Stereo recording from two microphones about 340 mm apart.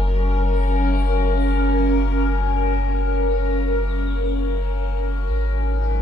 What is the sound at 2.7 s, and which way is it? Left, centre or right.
Music, left.